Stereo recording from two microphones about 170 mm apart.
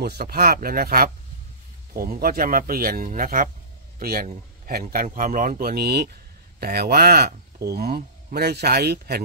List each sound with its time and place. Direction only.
0.0 s speech: 65° right (ahead or behind)